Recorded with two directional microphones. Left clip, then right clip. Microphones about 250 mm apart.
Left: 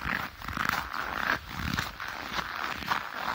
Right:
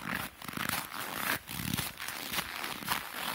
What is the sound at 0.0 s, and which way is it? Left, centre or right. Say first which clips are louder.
Dog: left 5 dB; left.